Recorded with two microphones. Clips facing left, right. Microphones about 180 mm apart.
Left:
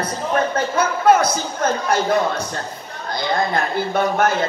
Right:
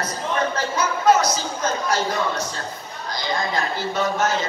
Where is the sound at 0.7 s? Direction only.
55° left (ahead or behind).